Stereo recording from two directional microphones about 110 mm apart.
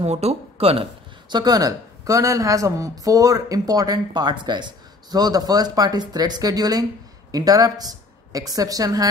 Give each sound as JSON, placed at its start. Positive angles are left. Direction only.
{"t": 0.0, "sound": "speech", "side_deg": -75}
{"t": 1.3, "sound": "speech", "side_deg": -35}